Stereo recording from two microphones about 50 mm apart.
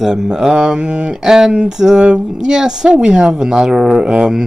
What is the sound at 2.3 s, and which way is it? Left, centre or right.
Speech, centre.